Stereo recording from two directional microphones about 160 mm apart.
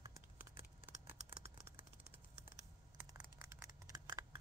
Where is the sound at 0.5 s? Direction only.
35° right (ahead or behind).